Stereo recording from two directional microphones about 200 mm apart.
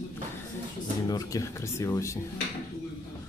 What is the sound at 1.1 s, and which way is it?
Speech, 15° left (ahead or behind).